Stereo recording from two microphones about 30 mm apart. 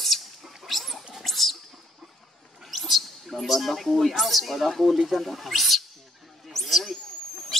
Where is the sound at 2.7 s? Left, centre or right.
Centre.